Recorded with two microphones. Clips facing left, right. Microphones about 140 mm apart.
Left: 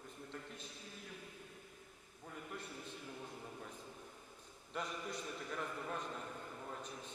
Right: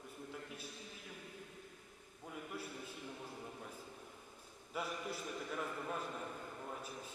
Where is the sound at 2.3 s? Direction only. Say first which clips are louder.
Right 2 dB; 5° right (ahead or behind).